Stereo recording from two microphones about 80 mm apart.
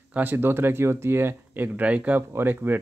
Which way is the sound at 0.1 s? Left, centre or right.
Right.